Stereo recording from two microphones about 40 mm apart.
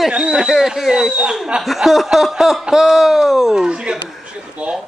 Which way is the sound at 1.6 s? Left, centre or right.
Centre.